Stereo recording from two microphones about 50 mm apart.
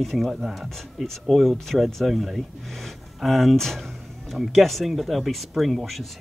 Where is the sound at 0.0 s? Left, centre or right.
Centre.